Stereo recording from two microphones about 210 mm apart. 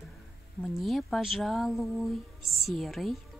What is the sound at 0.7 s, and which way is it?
A woman's voice, centre (ahead or behind).